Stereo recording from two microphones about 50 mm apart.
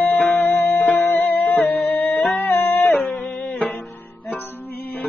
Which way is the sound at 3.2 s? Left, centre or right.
Left.